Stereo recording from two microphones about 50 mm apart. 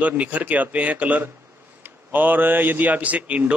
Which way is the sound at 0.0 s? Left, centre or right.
Right.